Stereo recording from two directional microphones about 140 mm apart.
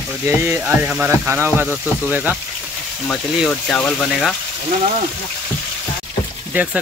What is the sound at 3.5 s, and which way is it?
Speech, 5° left (ahead or behind).